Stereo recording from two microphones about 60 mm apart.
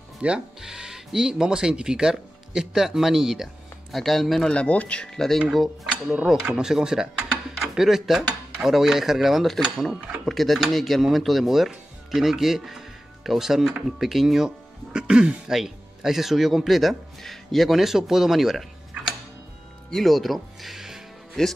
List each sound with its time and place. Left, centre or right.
0.2 s speech: right
0.6 s speech: centre
4.5 s speech: left
6.3 s speech: centre
19.9 s speech: centre
21.4 s speech: centre